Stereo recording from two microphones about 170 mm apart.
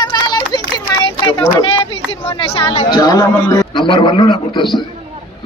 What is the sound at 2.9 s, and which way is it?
A man's voice, 25° left (ahead or behind).